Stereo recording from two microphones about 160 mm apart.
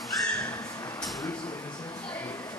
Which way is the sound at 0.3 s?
20° left (ahead or behind).